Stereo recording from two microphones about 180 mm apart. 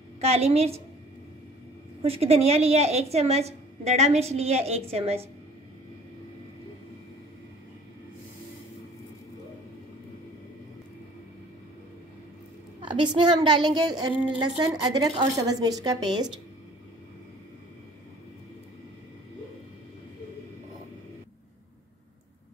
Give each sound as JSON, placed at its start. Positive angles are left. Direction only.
{"t": 0.2, "sound": "a woman's voice", "side_deg": -35}
{"t": 2.0, "sound": "a woman's voice", "side_deg": -35}
{"t": 12.8, "sound": "a woman's voice", "side_deg": -25}